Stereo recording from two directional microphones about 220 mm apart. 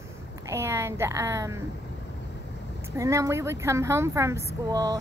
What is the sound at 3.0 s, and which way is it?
Speech, 15° right (ahead or behind).